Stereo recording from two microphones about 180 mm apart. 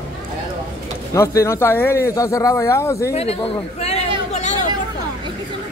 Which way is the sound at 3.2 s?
35° left (ahead or behind).